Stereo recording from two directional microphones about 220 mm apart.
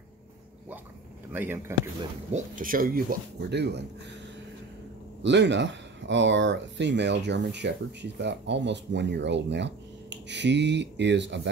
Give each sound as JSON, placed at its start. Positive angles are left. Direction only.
{"t": 1.3, "sound": "speech", "side_deg": -10}
{"t": 2.3, "sound": "speech", "side_deg": -35}
{"t": 5.2, "sound": "speech", "side_deg": -55}